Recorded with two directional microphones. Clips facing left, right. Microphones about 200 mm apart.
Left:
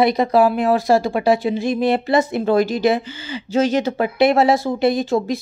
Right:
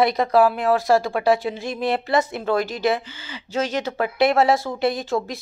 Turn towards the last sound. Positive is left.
turn(degrees=0)  # may be behind; listen again after turning